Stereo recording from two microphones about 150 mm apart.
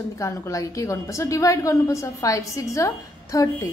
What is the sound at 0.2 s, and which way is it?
A woman's voice, 20° left (ahead or behind).